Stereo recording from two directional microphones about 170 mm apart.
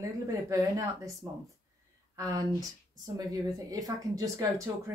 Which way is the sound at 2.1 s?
20° right (ahead or behind).